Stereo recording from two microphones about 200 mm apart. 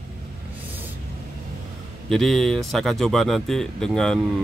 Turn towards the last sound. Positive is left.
turn(degrees=5)  # may be behind; listen again after turning